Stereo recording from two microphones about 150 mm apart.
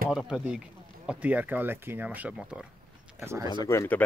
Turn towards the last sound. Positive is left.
turn(degrees=15)  # may be behind; listen again after turning